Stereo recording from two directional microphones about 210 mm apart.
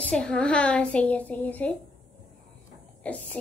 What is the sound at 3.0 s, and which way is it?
Speech, 5° left (ahead or behind).